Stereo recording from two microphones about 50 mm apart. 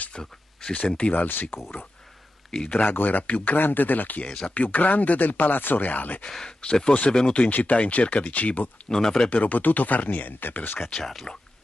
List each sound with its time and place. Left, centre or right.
0.1 s speech: centre
1.1 s speech: left
2.5 s speech: centre
2.8 s speech: left
4.2 s speech: left
6.3 s speech: centre
7.4 s speech: left
8.8 s speech: centre
9.3 s speech: left
11.3 s speech: centre